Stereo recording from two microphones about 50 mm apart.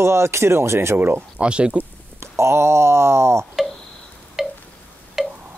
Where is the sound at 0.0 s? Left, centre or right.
Right.